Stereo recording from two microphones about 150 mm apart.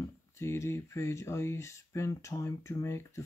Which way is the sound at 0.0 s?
20° left (ahead or behind).